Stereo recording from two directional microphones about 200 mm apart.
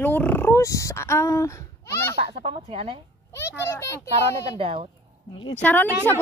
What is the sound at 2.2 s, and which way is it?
Speech, 25° right (ahead or behind).